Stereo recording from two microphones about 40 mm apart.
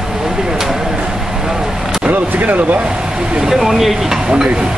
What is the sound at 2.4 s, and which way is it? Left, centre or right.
Speech, right.